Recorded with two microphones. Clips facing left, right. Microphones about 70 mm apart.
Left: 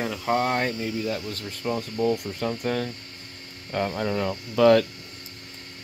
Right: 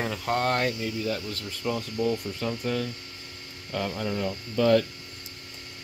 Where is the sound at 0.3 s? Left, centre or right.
Centre.